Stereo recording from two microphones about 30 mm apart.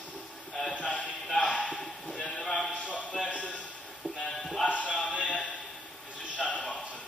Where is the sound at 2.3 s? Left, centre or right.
Centre.